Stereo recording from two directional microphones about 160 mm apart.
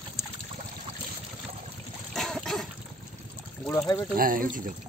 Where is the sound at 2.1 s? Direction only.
Centre (ahead or behind).